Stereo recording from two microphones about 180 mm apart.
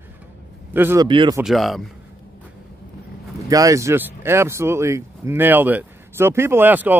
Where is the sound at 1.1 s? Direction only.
30° right (ahead or behind).